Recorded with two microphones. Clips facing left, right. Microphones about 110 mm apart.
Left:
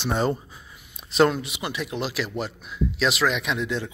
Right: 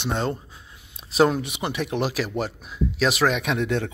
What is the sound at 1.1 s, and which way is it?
Speech, 10° right (ahead or behind).